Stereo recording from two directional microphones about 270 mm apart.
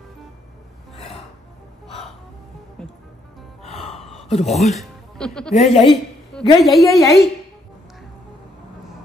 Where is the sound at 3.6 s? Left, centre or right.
Left.